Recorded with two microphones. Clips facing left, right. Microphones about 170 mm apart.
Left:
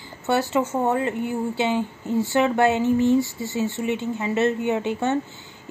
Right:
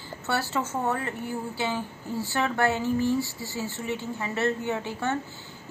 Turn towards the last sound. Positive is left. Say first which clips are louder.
# left 6 dB
turn(degrees=20)  # may be behind; listen again after turning